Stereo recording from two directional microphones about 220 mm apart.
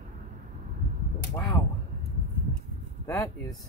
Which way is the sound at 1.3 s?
15° left (ahead or behind).